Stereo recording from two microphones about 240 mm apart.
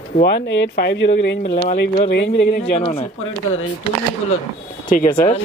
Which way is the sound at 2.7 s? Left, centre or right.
Left.